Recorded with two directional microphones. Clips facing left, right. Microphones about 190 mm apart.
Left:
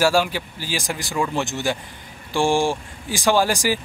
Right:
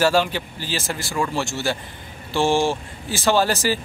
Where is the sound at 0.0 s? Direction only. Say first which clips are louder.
Even; 10° left (ahead or behind).